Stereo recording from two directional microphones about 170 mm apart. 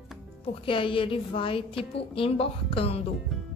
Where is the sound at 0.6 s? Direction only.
30° left (ahead or behind).